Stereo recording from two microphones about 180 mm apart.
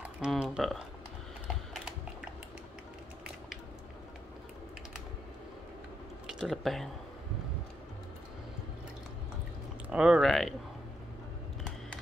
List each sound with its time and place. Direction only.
0.0 s a sound: 5° right (ahead or behind)
1.7 s typing: 5° right (ahead or behind)
6.2 s speech: centre (ahead or behind)
9.8 s speech: 5° right (ahead or behind)